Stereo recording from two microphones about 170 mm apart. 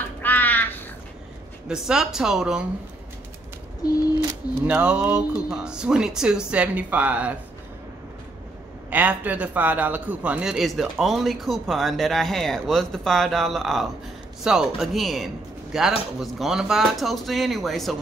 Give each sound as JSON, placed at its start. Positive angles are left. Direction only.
{"t": 0.0, "sound": "crow", "side_deg": 10}
{"t": 1.7, "sound": "a man's voice", "side_deg": -5}
{"t": 4.6, "sound": "speech", "side_deg": -5}
{"t": 8.9, "sound": "a man's voice", "side_deg": -10}